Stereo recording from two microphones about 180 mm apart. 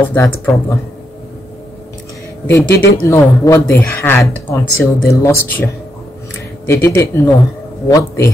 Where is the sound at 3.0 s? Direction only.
15° left (ahead or behind).